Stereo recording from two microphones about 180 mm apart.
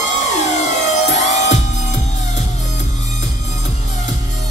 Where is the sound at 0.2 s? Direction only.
40° left (ahead or behind).